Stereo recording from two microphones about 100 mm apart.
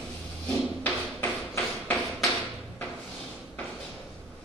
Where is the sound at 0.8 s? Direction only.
20° left (ahead or behind).